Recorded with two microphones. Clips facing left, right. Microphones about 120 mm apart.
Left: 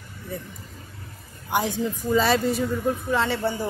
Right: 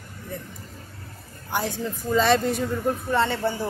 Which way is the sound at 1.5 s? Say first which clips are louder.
Left 3 dB; 15° left (ahead or behind).